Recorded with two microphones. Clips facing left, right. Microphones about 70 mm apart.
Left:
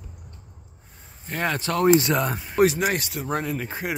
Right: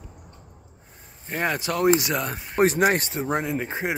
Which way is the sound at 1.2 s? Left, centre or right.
Centre.